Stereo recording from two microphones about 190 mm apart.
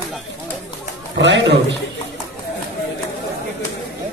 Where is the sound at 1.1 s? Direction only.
70° right (ahead or behind).